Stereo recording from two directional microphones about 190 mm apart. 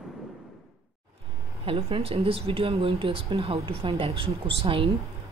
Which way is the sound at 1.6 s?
30° right (ahead or behind).